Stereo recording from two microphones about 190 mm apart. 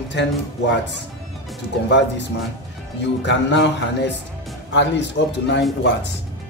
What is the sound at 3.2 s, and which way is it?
A man's voice, 65° left (ahead or behind).